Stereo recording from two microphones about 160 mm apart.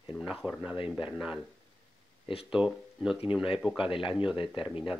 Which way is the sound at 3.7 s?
35° left (ahead or behind).